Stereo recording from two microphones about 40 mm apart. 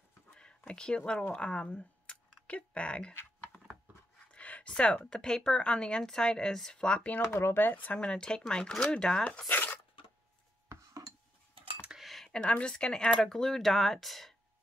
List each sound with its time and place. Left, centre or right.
0.3 s speech: left
4.3 s a sound: left
5.0 s speech: centre
6.8 s speech: left
7.3 s speech: left
7.6 s speech: left
8.0 s speech: left
9.5 s a sound: left
12.0 s a sound: centre
12.3 s speech: left; by 14.3 s centre